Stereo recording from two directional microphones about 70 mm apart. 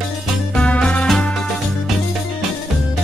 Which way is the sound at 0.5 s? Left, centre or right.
Centre.